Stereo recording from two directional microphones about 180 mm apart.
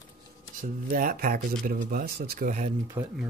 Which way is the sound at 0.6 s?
50° right (ahead or behind).